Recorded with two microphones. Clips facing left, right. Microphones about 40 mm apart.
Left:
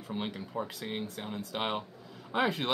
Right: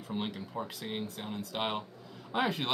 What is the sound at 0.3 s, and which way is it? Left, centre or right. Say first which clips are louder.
Speech: left 2 dB; centre.